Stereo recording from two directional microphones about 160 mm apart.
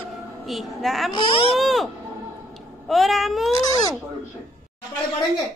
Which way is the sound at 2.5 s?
Centre (ahead or behind).